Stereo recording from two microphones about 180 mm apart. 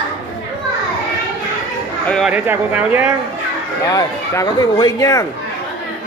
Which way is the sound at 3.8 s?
20° left (ahead or behind).